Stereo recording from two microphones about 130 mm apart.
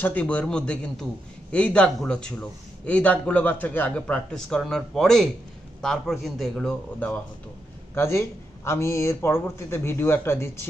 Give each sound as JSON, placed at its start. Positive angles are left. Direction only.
{"t": 0.0, "sound": "a man's voice", "side_deg": 10}
{"t": 7.9, "sound": "speech", "side_deg": 20}